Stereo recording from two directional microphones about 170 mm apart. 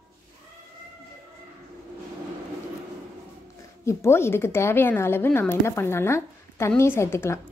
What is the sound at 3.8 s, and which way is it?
Speech, 15° left (ahead or behind).